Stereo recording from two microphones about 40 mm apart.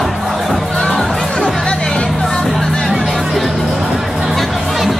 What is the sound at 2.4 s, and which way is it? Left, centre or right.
Music, centre.